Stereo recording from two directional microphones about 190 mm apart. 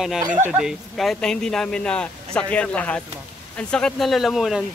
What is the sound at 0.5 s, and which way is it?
Speech, 5° right (ahead or behind).